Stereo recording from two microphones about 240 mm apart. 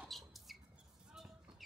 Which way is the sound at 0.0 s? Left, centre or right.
Centre.